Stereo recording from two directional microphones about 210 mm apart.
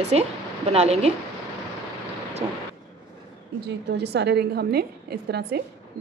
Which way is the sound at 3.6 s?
50° right (ahead or behind).